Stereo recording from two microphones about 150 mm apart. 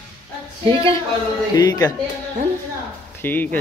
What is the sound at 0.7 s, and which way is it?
Speech, 35° right (ahead or behind).